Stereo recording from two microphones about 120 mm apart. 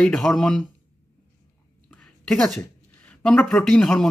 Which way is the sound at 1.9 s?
5° left (ahead or behind).